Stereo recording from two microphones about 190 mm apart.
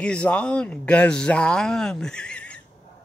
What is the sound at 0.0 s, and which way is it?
A man's voice, 5° left (ahead or behind).